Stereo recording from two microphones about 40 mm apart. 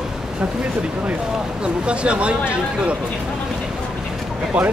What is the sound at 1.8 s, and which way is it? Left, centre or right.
Speech, right.